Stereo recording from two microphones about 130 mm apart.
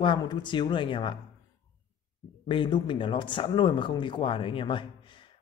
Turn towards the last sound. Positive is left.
turn(degrees=40)  # may be behind; listen again after turning